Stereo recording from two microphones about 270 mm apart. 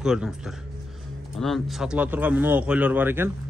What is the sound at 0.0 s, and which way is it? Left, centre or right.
A man's voice, centre.